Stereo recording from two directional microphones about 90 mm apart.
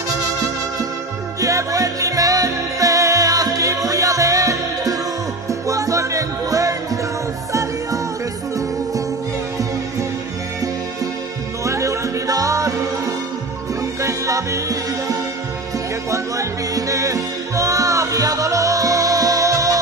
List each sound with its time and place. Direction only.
1.4 s music: 40° right (ahead or behind)
11.6 s music: 35° right (ahead or behind)
14.0 s music: 35° right (ahead or behind)